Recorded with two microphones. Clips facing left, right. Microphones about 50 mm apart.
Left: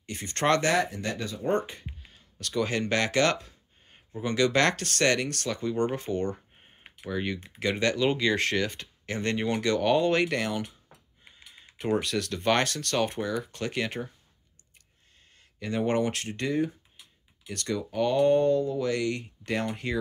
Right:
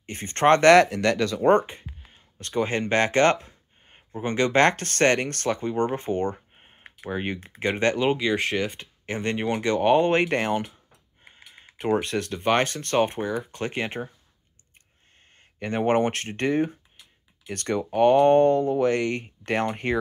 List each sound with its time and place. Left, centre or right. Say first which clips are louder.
0.0 s speech: right 7 dB; right
0.6 s speech: right 10 dB; right
1.5 s speech: right 7 dB; right
6.3 s a sound: right 2 dB; right
7.1 s speech: right 2 dB; right
8.2 s speech: right 1 dB; centre
15.6 s speech: right 4 dB; right